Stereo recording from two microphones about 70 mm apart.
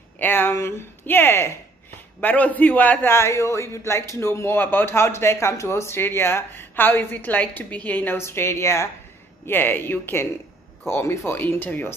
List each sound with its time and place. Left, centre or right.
0.2 s a man's voice: left
2.2 s a man's voice: left
3.1 s a man's voice: left
8.2 s a woman's voice: left
9.5 s a man's voice: left